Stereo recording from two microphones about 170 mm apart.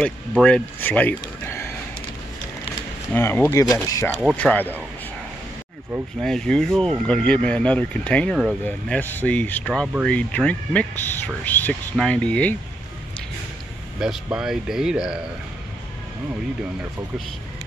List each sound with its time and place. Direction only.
0.4 s speech: 10° left (ahead or behind)
3.1 s speech: 15° left (ahead or behind)
6.2 s speech: 5° left (ahead or behind)
13.9 s speech: 5° right (ahead or behind)